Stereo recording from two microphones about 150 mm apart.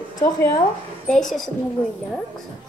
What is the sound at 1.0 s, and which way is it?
Speech, 5° left (ahead or behind).